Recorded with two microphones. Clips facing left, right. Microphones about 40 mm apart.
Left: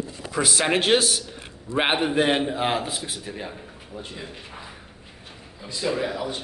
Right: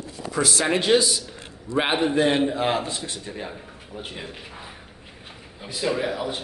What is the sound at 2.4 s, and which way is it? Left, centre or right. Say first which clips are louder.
A man's voice: right 2 dB; centre.